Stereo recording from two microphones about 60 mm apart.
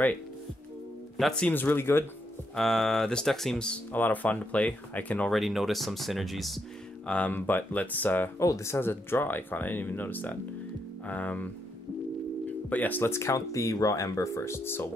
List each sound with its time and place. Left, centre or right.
1.5 s speech: left
2.5 s speech: centre
3.9 s speech: left
5.3 s speech: centre
7.1 s speech: left
8.4 s speech: left
8.7 s speech: left
12.6 s speech: left
13.0 s speech: left